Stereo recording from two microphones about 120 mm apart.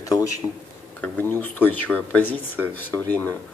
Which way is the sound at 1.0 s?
15° left (ahead or behind).